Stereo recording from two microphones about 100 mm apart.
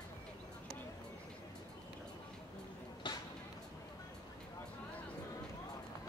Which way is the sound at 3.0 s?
50° left (ahead or behind).